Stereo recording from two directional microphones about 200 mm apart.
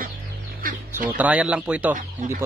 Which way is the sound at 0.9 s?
5° right (ahead or behind).